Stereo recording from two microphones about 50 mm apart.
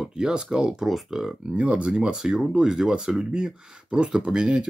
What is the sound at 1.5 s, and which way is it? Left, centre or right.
Speech, right.